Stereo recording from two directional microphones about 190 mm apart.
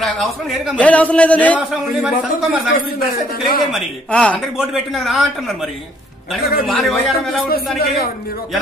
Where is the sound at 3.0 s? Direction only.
50° left (ahead or behind).